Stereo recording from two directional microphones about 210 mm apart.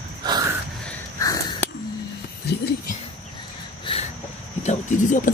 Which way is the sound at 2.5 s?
50° left (ahead or behind).